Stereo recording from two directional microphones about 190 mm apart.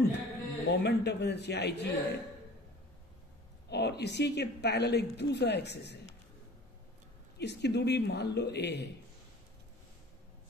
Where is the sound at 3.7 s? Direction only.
60° left (ahead or behind).